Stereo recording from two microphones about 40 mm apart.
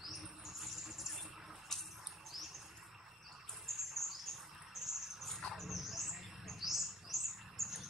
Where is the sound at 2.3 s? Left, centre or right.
Centre.